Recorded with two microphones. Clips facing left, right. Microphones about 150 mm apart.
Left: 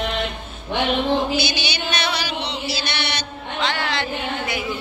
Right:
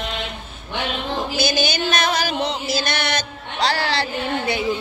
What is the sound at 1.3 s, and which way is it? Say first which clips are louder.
Chant: right 3 dB; 45° right (ahead or behind).